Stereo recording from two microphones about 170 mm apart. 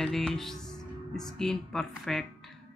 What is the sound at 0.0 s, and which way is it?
Speech, 5° left (ahead or behind).